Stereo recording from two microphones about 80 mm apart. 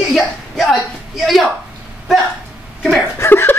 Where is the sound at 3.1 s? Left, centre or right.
Left.